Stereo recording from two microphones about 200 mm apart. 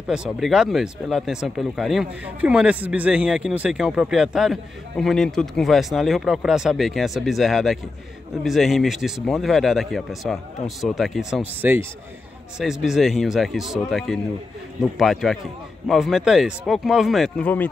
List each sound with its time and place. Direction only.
0.1 s speech: 5° right (ahead or behind)